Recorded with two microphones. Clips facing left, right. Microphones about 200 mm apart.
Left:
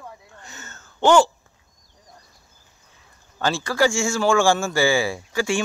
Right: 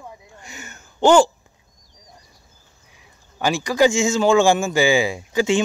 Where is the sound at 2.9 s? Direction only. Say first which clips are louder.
Right 3 dB; 15° right (ahead or behind).